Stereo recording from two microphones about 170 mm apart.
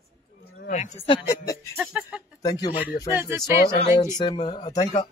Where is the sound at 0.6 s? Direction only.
45° left (ahead or behind).